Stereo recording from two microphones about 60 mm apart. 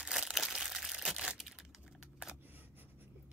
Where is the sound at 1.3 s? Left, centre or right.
Centre.